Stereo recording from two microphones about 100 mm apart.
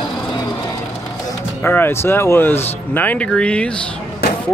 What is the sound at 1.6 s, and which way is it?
Speech, 20° left (ahead or behind).